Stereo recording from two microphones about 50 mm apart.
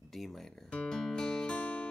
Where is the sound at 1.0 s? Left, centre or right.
Centre.